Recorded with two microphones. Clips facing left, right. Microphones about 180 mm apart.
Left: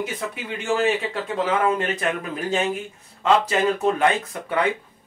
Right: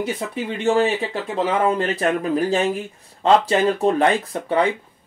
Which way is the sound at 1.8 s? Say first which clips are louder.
Right 4 dB; 35° right (ahead or behind).